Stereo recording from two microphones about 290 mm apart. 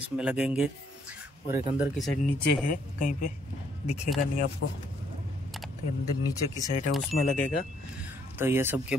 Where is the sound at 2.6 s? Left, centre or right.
Left.